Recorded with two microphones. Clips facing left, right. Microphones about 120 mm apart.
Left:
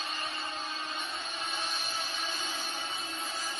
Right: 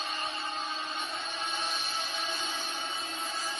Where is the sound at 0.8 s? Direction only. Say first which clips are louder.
Right 2 dB; centre (ahead or behind).